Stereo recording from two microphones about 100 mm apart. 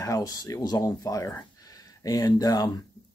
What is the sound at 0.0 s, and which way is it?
Speech, 35° left (ahead or behind).